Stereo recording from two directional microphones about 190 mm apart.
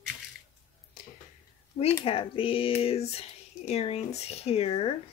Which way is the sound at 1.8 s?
30° left (ahead or behind).